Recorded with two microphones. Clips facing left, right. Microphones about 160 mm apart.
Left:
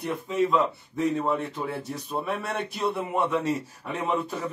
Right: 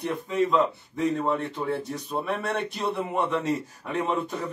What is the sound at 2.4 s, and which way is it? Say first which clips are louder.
A man's voice: even; centre (ahead or behind).